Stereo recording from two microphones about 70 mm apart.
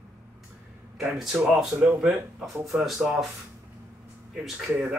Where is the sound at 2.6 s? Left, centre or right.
Centre.